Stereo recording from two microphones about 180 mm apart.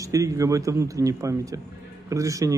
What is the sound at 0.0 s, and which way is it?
Speech, 20° right (ahead or behind).